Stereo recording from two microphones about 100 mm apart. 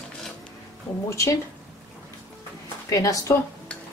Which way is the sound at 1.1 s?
30° left (ahead or behind).